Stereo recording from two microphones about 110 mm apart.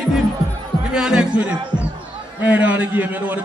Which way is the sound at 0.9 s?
5° right (ahead or behind).